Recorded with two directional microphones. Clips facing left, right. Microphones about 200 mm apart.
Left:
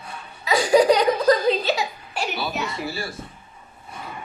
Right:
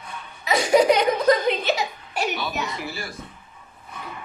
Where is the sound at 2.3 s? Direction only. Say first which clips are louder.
Left 1 dB; 30° left (ahead or behind).